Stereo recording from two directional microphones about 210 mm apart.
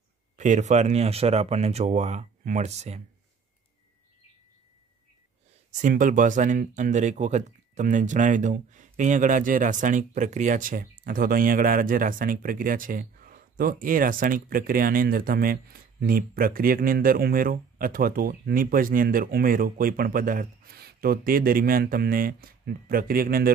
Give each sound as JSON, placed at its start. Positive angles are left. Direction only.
{"t": 0.4, "sound": "speech", "side_deg": -35}
{"t": 5.7, "sound": "speech", "side_deg": -40}